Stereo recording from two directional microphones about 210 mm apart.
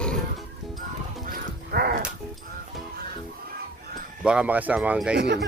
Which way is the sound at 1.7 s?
45° right (ahead or behind).